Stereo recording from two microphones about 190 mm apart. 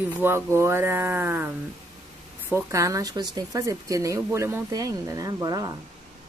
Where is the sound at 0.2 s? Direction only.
15° right (ahead or behind).